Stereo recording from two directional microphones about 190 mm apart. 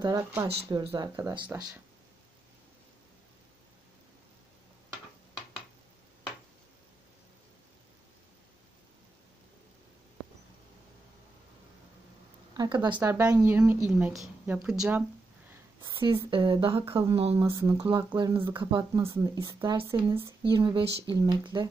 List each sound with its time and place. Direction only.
0.0 s a woman's voice: 15° right (ahead or behind)
12.5 s a woman's voice: 20° right (ahead or behind); by 15.0 s 5° right (ahead or behind)
15.8 s a woman's voice: 25° right (ahead or behind)